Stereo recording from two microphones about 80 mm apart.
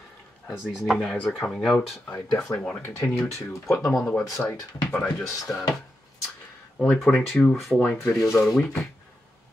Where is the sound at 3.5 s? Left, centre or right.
Left.